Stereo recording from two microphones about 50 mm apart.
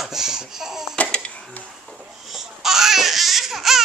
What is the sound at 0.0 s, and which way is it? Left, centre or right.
Laughter, centre.